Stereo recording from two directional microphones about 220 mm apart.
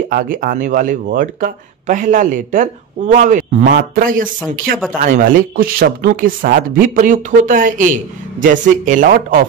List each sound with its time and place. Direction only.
0.1 s speech: 40° right (ahead or behind)